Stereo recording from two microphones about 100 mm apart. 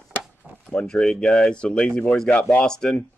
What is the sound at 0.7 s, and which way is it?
Speech, 5° left (ahead or behind).